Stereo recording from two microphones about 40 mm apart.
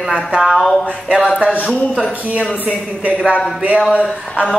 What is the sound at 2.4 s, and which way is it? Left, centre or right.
Speech, right.